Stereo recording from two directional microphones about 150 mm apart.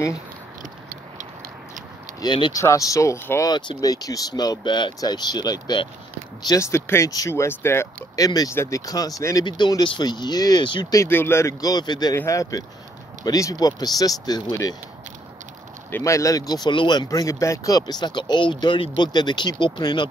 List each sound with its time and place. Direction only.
2.1 s speech: 30° left (ahead or behind)
3.4 s speech: 30° left (ahead or behind)
15.9 s speech: 20° left (ahead or behind)